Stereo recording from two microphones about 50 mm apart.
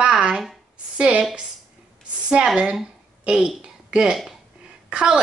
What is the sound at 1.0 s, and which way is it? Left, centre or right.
Speech, right.